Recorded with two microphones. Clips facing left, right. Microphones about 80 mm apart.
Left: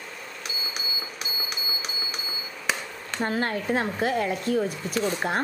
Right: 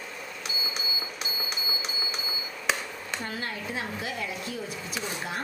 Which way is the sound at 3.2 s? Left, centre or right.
Left.